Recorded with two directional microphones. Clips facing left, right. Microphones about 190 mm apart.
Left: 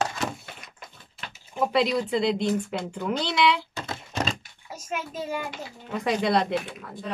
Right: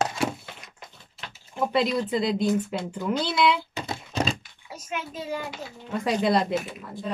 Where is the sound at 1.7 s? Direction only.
Centre (ahead or behind).